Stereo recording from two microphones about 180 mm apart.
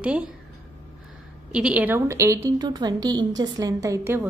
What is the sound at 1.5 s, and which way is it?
Speech, 5° right (ahead or behind).